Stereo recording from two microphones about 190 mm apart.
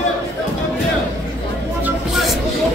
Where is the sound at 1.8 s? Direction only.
5° right (ahead or behind).